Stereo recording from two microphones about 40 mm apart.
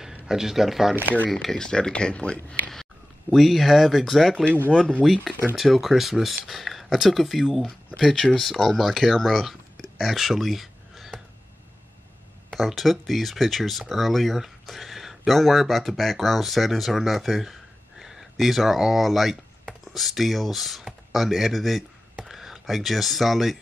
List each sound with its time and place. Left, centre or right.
0.3 s speech: centre
1.0 s speech: left
1.3 s speech: centre
2.7 s speech: centre
12.5 s speech: centre